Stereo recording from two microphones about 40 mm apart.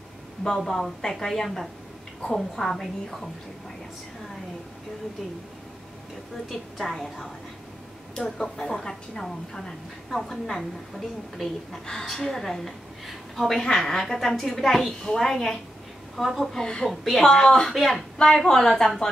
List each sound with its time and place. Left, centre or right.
0.6 s a woman's voice: centre
6.8 s a woman's voice: centre
8.4 s a woman's voice: centre
11.8 s a woman's voice: centre
16.5 s speech: centre
16.8 s a woman's voice: centre
17.3 s a woman's voice: centre
17.7 s a woman's voice: centre
18.1 s a woman's voice: centre